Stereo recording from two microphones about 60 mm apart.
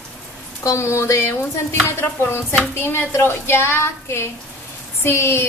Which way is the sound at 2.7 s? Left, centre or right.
Left.